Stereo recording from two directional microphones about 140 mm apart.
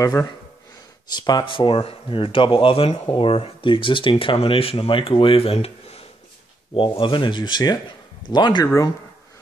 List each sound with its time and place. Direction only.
0.0 s speech: 25° left (ahead or behind)